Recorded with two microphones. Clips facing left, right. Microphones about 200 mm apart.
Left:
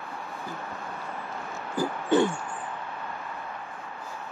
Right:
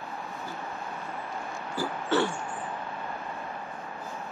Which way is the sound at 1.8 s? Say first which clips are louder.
Left 4 dB; 15° left (ahead or behind).